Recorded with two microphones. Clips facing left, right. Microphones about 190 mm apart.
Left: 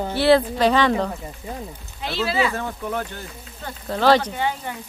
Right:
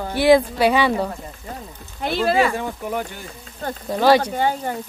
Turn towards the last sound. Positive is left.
turn(degrees=-40)  # may be behind; listen again after turning